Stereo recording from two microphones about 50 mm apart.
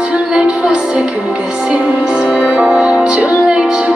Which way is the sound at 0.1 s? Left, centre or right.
Centre.